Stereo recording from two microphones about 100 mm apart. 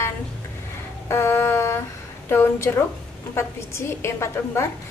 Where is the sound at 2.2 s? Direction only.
25° left (ahead or behind).